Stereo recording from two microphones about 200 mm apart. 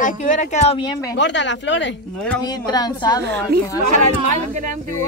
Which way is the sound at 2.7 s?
20° left (ahead or behind).